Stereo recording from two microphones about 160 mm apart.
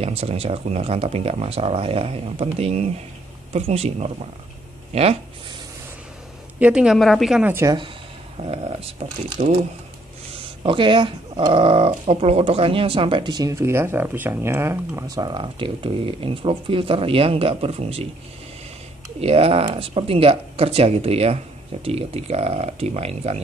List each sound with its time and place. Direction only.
0.0 s speech: 40° right (ahead or behind)
6.6 s a woman's voice: 5° right (ahead or behind)
7.4 s speech: 15° right (ahead or behind)
8.4 s speech: 40° right (ahead or behind)
9.4 s speech: 50° right (ahead or behind)
10.4 s speech: 35° right (ahead or behind)
19.1 s speech: 40° right (ahead or behind)